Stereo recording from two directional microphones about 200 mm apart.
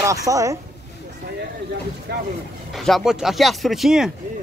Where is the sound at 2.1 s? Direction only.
55° right (ahead or behind).